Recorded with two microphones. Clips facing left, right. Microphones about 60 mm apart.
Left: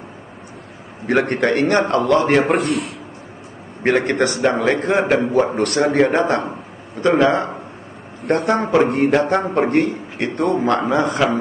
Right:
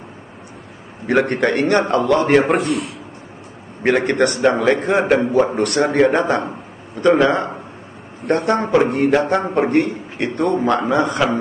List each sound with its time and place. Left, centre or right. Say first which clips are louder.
1.0 s a man's voice: right 1 dB; centre
2.5 s a man's voice: even; left
3.8 s a man's voice: right 1 dB; centre